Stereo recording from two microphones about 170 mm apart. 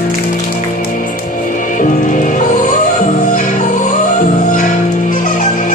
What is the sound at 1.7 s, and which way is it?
Music, 50° left (ahead or behind).